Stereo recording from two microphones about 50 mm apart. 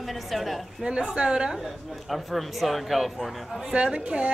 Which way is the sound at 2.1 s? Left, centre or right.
Centre.